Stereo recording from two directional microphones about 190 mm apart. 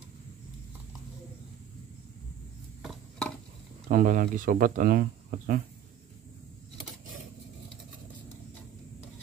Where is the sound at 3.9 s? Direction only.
45° right (ahead or behind).